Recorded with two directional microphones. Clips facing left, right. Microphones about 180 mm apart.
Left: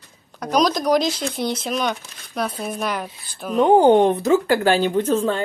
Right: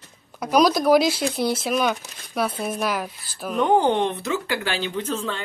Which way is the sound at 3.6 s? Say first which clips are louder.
Left 6 dB; 30° left (ahead or behind).